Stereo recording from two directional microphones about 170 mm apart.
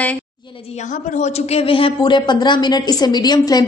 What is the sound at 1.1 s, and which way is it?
A woman's voice, 40° left (ahead or behind).